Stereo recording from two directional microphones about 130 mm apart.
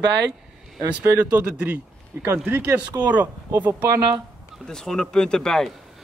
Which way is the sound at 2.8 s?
30° right (ahead or behind).